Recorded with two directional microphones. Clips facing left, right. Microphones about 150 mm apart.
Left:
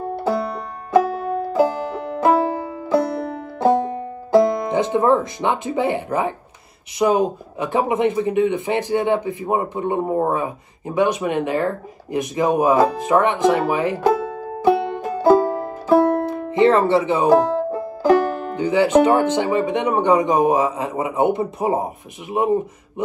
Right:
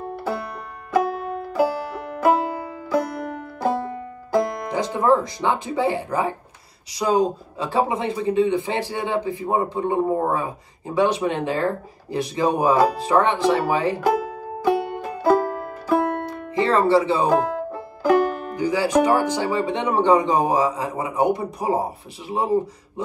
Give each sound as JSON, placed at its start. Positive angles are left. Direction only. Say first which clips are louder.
{"t": 0.1, "sound": "music", "louder": "left 7 dB", "side_deg": 30}
{"t": 7.0, "sound": "speech", "louder": "left 4 dB", "side_deg": 5}
{"t": 7.5, "sound": "speech", "louder": "left 3 dB", "side_deg": 20}
{"t": 15.1, "sound": "music", "louder": "left 4 dB", "side_deg": 30}
{"t": 16.9, "sound": "speech", "louder": "left 1 dB", "side_deg": 20}
{"t": 17.3, "sound": "music", "louder": "left 5 dB", "side_deg": 30}
{"t": 19.2, "sound": "speech", "louder": "left 3 dB", "side_deg": 25}